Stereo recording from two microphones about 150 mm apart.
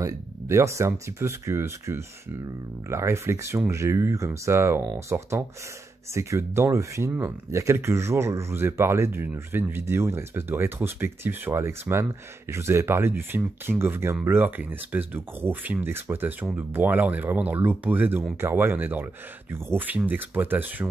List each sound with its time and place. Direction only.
0.0 s speech: 20° right (ahead or behind)